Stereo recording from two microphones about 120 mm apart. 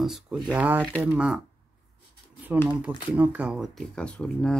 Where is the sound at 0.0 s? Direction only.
5° right (ahead or behind).